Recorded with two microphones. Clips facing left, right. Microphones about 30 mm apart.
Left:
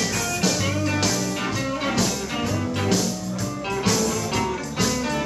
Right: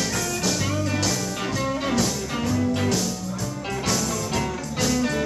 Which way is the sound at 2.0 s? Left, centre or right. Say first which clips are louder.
Left 1 dB; centre.